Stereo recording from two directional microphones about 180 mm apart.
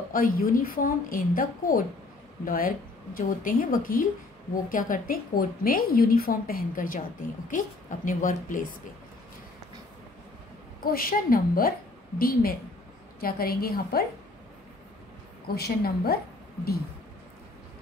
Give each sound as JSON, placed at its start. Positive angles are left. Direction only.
{"t": 0.1, "sound": "a woman's voice", "side_deg": 50}
{"t": 10.8, "sound": "a woman's voice", "side_deg": 55}
{"t": 15.4, "sound": "a woman's voice", "side_deg": 60}